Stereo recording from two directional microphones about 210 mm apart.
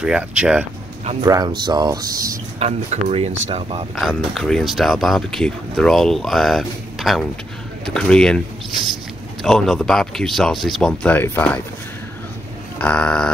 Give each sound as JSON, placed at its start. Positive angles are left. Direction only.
{"t": 0.0, "sound": "speech", "side_deg": -5}
{"t": 1.2, "sound": "speech", "side_deg": -20}
{"t": 2.6, "sound": "speech", "side_deg": -30}
{"t": 3.9, "sound": "speech", "side_deg": 0}
{"t": 9.4, "sound": "speech", "side_deg": 0}
{"t": 12.7, "sound": "speech", "side_deg": 5}